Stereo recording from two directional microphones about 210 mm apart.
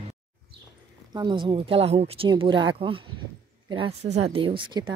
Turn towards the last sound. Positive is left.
turn(degrees=-25)  # may be behind; listen again after turning